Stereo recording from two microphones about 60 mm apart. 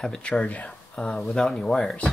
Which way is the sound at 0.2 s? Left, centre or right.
Centre.